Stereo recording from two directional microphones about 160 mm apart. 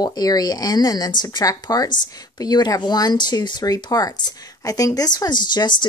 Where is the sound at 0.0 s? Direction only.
25° left (ahead or behind).